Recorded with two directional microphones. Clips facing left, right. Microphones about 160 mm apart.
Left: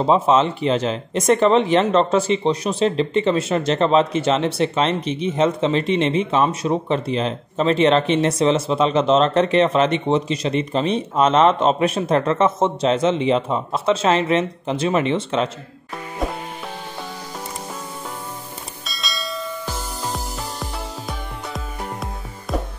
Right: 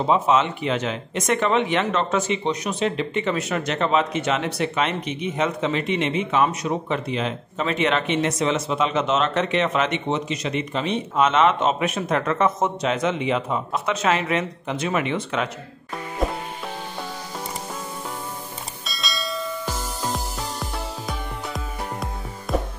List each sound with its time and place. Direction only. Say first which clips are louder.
0.0 s speech: left 3 dB; 30° left (ahead or behind)
18.9 s bell: even; centre (ahead or behind)
21.1 s music: even; centre (ahead or behind)